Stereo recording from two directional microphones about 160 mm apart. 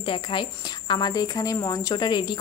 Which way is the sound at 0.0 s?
30° left (ahead or behind).